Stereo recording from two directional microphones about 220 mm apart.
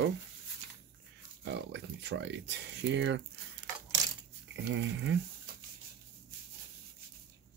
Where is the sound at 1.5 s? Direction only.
55° right (ahead or behind).